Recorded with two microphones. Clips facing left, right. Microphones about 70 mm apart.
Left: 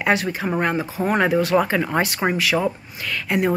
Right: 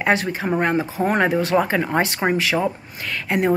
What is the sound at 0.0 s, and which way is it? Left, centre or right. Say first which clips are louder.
Speech: right 1 dB; right.